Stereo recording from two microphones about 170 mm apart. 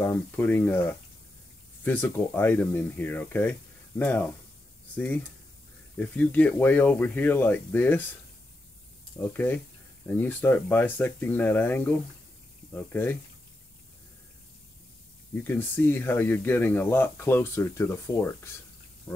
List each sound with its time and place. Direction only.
0.0 s speech: 10° left (ahead or behind)
9.2 s speech: 10° left (ahead or behind)
15.4 s speech: 10° left (ahead or behind)